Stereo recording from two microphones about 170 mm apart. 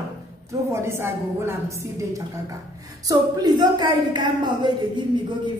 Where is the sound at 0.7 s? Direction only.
15° right (ahead or behind).